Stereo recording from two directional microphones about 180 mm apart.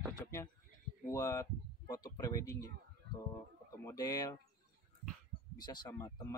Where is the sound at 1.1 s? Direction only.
20° left (ahead or behind).